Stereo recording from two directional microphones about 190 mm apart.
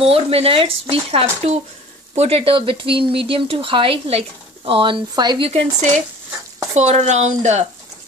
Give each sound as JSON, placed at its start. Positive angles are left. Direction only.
{"t": 0.0, "sound": "speech", "side_deg": -30}